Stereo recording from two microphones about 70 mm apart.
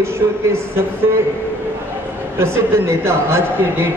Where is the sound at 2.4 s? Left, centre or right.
Right.